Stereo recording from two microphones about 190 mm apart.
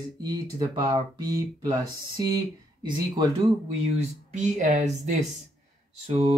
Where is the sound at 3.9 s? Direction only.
35° right (ahead or behind).